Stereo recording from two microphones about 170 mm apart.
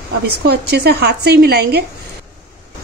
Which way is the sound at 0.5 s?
70° right (ahead or behind).